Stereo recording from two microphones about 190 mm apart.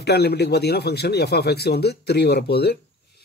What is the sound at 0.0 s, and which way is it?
Speech, 60° left (ahead or behind).